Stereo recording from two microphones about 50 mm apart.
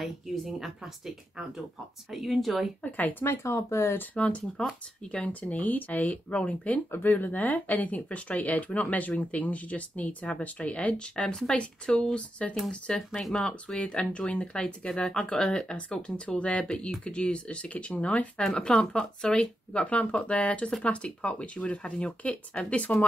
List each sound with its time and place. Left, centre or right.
0.0 s speech: centre
2.8 s speech: left
3.4 s speech: left
4.1 s speech: left
4.6 s speech: centre
5.1 s speech: left
6.9 s speech: left
11.2 s speech: centre; by 18.3 s left
18.4 s speech: centre; by 23.0 s left